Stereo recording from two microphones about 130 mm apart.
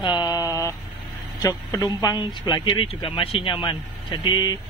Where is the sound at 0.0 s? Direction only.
35° left (ahead or behind).